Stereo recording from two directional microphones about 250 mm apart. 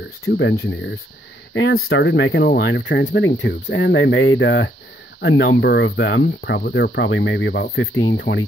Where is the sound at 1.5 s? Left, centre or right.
Left.